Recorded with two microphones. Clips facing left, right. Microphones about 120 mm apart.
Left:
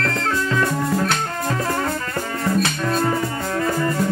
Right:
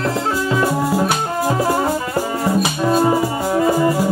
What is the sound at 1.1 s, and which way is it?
Music, 15° right (ahead or behind).